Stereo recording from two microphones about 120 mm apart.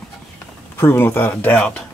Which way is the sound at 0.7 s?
20° left (ahead or behind).